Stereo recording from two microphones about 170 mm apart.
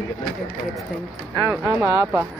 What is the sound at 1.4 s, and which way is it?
Speech, 15° right (ahead or behind).